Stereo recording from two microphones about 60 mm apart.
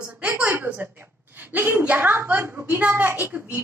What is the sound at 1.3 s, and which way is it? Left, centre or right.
A woman's voice, right.